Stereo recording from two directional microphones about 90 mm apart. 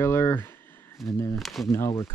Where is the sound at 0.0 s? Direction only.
30° left (ahead or behind).